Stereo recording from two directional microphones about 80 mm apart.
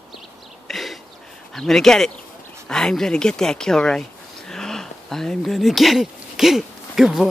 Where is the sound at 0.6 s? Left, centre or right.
Centre.